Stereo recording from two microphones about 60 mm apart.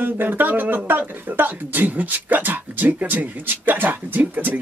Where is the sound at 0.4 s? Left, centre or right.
Right.